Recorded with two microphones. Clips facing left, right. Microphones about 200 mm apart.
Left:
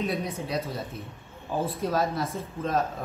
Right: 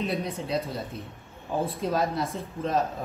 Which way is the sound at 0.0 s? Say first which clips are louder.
Even; centre (ahead or behind).